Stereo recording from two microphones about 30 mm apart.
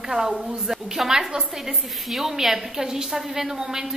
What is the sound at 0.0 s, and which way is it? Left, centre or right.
A woman's voice, centre.